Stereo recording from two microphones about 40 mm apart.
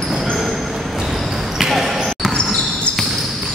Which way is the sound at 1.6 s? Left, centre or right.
Centre.